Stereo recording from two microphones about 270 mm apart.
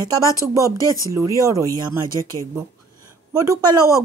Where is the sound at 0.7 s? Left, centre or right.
Centre.